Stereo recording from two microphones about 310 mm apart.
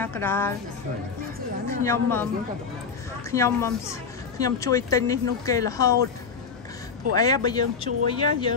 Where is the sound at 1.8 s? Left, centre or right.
Centre.